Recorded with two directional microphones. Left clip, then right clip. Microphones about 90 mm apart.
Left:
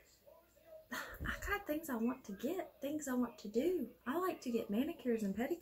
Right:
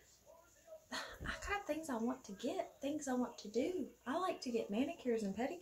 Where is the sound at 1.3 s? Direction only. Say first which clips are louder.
Left 1 dB; 20° right (ahead or behind).